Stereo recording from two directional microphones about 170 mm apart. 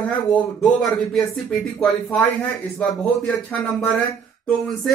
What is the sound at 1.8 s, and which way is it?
Speech, 10° left (ahead or behind).